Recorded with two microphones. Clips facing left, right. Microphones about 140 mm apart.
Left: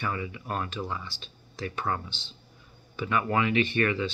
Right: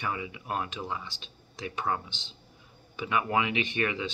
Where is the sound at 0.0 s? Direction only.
15° right (ahead or behind).